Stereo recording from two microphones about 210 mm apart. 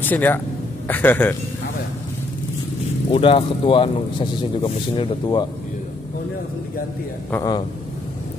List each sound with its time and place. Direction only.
0.0 s speech: 10° left (ahead or behind)
3.1 s speech: 25° left (ahead or behind)
7.2 s speech: 15° left (ahead or behind)